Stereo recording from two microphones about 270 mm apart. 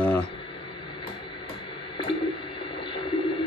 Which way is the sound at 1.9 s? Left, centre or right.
Centre.